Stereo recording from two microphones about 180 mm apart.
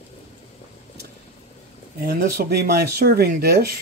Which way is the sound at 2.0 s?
55° right (ahead or behind).